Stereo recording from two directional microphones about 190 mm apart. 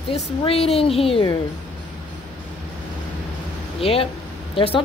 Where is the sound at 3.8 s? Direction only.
30° left (ahead or behind).